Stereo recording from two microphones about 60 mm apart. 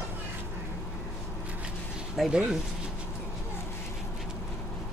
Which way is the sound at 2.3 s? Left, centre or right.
Centre.